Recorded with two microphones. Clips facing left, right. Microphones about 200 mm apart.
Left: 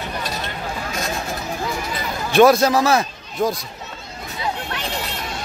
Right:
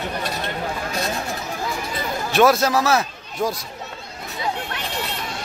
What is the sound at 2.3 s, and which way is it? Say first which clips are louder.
A man's voice: left 4 dB; centre (ahead or behind).